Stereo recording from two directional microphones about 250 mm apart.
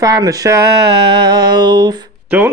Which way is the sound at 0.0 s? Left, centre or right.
Centre.